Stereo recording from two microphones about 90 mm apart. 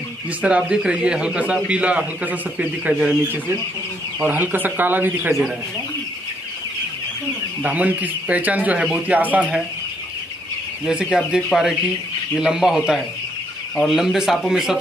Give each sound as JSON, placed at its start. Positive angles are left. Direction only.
{"t": 0.4, "sound": "speech", "side_deg": -10}
{"t": 7.6, "sound": "speech", "side_deg": -15}
{"t": 10.9, "sound": "speech", "side_deg": -10}